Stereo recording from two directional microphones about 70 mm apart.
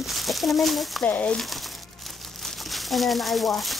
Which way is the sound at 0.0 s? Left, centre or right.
Centre.